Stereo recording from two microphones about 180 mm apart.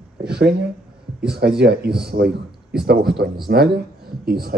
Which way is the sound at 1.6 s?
65° right (ahead or behind).